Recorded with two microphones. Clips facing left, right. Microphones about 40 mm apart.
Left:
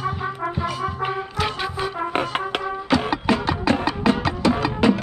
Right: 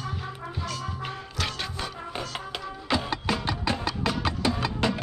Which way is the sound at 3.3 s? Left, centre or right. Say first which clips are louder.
Left 8 dB; centre.